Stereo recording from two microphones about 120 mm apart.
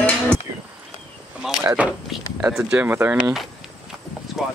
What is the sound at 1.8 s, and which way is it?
Speech, 10° right (ahead or behind).